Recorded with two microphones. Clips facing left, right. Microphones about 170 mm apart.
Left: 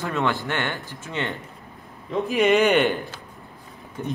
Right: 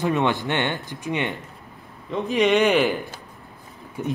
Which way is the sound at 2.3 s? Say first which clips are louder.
Even; centre (ahead or behind).